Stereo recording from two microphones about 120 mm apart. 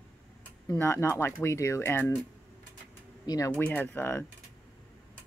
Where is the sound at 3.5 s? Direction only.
15° left (ahead or behind).